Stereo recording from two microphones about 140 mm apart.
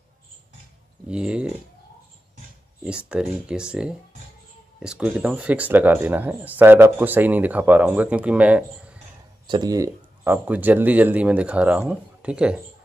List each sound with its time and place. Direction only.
1.0 s speech: 5° right (ahead or behind)
3.1 s speech: 5° right (ahead or behind)
9.5 s speech: 30° right (ahead or behind); by 12.6 s 10° right (ahead or behind)